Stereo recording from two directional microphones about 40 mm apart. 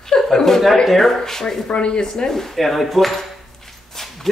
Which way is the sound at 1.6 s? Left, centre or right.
Left.